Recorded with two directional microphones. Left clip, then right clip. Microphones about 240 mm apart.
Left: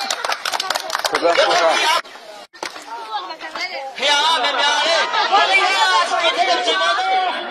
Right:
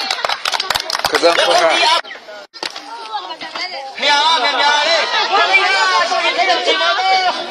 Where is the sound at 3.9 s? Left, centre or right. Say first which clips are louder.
Right 3 dB; left.